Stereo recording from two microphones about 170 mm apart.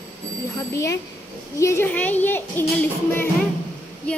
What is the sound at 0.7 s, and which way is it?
A woman's voice, 20° left (ahead or behind).